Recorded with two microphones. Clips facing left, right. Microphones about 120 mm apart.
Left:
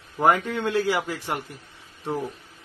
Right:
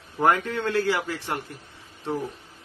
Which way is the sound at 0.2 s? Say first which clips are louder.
Left 1 dB; 10° left (ahead or behind).